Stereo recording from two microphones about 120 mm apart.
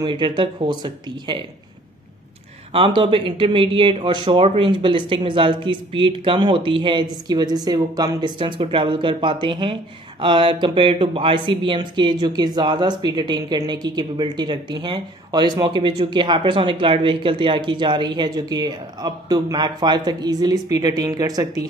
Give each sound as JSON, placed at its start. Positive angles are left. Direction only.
{"t": 0.0, "sound": "speech", "side_deg": -40}
{"t": 2.7, "sound": "speech", "side_deg": -45}